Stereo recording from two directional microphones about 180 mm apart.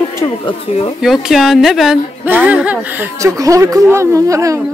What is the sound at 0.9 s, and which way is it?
A woman's voice, centre (ahead or behind).